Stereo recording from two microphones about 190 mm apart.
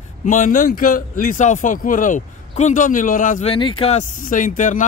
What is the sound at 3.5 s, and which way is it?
Speech, 30° left (ahead or behind).